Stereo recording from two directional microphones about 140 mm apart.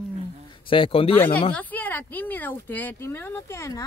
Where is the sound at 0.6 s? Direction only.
40° left (ahead or behind).